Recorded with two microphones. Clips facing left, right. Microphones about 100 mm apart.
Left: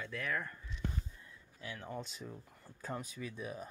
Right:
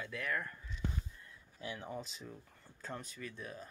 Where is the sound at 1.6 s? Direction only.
15° right (ahead or behind).